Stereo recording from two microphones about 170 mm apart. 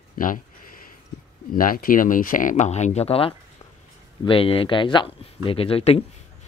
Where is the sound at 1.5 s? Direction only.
55° left (ahead or behind); by 6.0 s 35° left (ahead or behind).